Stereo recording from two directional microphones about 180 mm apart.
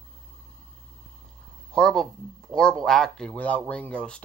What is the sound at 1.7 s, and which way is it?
Speech, centre (ahead or behind).